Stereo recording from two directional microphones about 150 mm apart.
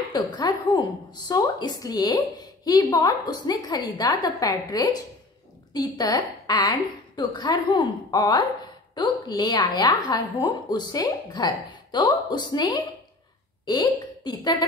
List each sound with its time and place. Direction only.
0.1 s a woman's voice: 30° left (ahead or behind)